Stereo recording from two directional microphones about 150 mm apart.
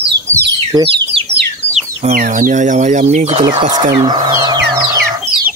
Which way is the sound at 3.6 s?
30° right (ahead or behind).